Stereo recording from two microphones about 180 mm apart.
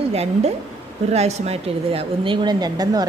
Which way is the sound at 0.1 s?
35° right (ahead or behind).